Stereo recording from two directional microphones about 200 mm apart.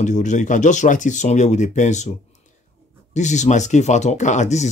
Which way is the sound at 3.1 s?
35° left (ahead or behind).